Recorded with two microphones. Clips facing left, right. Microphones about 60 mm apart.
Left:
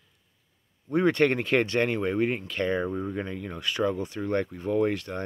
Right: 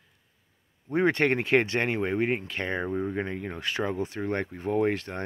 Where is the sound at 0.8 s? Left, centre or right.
Right.